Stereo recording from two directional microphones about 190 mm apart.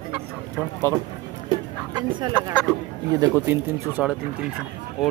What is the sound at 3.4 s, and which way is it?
Speech, 10° right (ahead or behind).